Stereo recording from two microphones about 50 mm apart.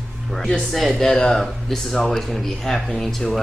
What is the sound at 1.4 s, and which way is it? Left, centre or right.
Speech, centre.